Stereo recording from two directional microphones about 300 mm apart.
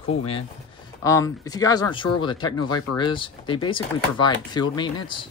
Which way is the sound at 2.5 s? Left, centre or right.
Left.